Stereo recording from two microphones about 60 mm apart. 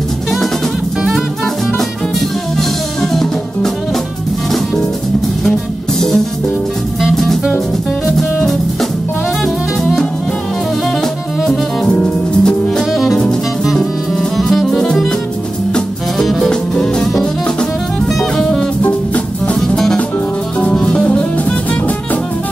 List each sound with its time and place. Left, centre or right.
2.5 s music: centre
7.2 s music: centre
12.0 s music: centre
12.9 s music: centre
14.3 s music: centre
18.8 s music: left
19.7 s music: centre